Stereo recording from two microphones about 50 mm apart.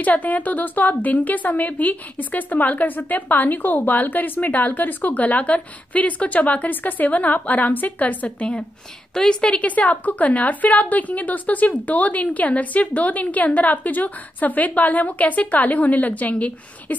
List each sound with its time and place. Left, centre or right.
0.0 s a woman's voice: left